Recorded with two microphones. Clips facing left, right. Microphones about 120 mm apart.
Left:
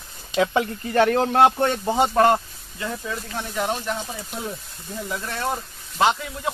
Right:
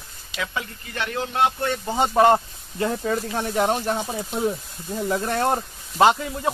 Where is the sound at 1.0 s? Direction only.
50° left (ahead or behind).